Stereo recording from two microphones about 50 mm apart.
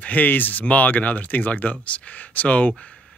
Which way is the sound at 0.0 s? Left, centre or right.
Left.